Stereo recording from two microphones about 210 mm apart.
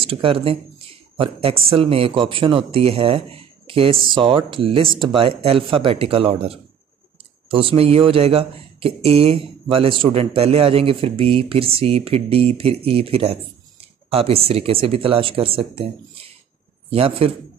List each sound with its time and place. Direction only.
0.0 s speech: 25° right (ahead or behind)
16.9 s speech: 25° right (ahead or behind)